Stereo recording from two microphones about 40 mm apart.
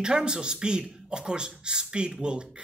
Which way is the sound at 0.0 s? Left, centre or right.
Right.